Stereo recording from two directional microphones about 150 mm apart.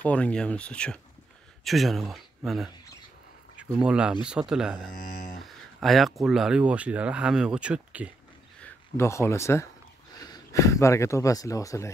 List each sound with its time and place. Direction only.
0.0 s speech: 10° left (ahead or behind)
3.7 s speech: 5° right (ahead or behind)
4.9 s speech: 65° left (ahead or behind)
5.4 s speech: centre (ahead or behind)
8.6 s speech: 15° left (ahead or behind)